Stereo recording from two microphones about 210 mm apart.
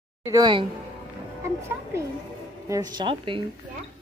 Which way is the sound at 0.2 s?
20° right (ahead or behind).